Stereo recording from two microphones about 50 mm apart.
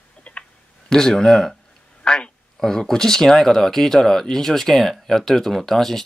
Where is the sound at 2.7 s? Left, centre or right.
Centre.